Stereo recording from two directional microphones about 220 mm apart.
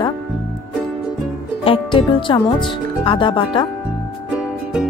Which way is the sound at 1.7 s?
25° left (ahead or behind).